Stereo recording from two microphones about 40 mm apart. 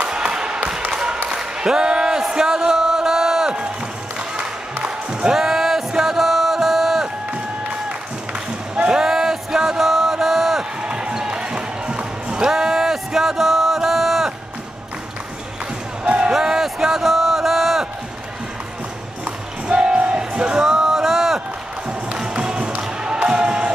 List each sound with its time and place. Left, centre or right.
0.0 s a sound: right
4.4 s music: right
5.3 s music: centre
8.9 s music: centre
10.8 s basketball bounce: right
12.4 s a sound: centre
16.0 s music: right
16.3 s a sound: centre
19.2 s music: right; by 21.4 s centre
21.8 s music: right